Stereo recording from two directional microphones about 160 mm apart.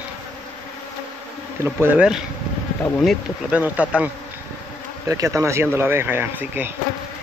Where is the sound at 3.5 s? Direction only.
10° right (ahead or behind).